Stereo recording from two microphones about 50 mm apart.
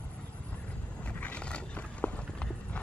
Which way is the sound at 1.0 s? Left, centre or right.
Left.